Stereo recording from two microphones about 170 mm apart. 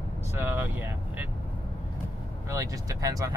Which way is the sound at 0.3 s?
15° right (ahead or behind).